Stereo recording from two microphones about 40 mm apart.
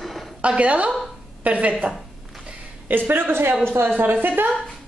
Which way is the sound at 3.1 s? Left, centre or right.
Right.